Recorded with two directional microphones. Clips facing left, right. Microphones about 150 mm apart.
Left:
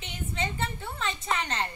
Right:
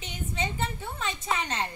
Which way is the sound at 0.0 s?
10° right (ahead or behind).